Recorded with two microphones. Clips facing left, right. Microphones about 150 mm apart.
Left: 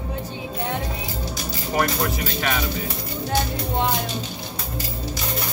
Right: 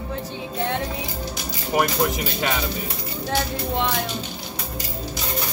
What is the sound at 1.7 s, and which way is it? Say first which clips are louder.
Speech: right 2 dB; 15° right (ahead or behind).